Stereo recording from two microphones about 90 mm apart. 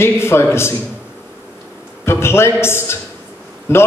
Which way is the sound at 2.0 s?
30° left (ahead or behind).